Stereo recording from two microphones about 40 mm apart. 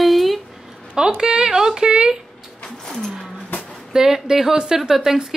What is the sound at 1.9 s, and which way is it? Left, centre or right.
Speech, right.